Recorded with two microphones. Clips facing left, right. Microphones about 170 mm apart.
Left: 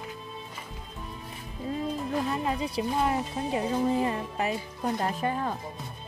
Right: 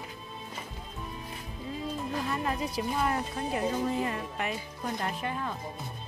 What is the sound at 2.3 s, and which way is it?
Speech, 25° left (ahead or behind).